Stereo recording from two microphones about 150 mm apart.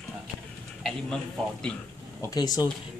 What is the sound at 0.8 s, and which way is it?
Speech, 5° left (ahead or behind).